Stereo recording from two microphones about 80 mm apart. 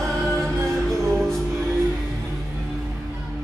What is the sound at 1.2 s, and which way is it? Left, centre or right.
Music, centre.